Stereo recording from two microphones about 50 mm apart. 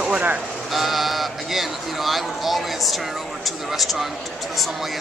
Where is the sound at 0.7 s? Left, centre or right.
Centre.